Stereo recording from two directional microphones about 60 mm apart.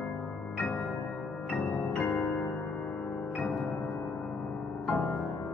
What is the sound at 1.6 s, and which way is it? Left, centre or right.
Music, centre.